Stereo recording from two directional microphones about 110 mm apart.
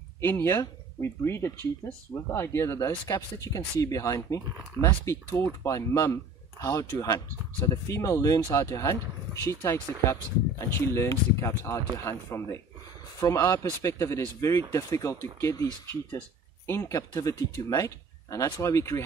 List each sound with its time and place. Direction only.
0.2 s speech: 20° left (ahead or behind)